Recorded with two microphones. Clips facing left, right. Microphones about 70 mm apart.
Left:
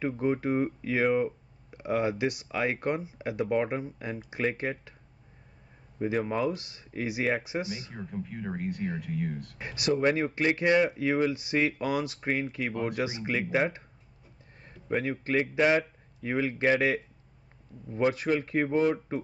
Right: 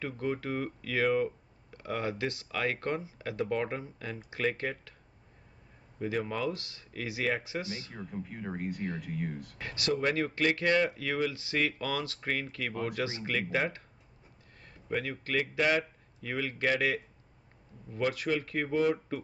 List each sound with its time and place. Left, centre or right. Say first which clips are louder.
0.0 s speech: left 6 dB; left
5.9 s speech: left 4 dB; left
8.1 s speech: left 3 dB; centre
9.6 s speech: left 4 dB; centre
12.7 s speech: left 2 dB; centre
13.0 s speech: left 3 dB; centre
15.0 s speech: left 4 dB; left